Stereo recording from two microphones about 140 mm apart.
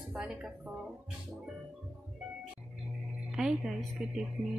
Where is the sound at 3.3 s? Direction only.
5° right (ahead or behind).